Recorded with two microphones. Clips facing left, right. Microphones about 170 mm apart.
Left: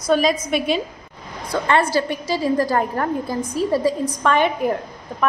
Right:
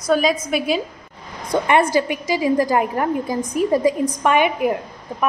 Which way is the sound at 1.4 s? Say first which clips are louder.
Right 2 dB; 20° right (ahead or behind).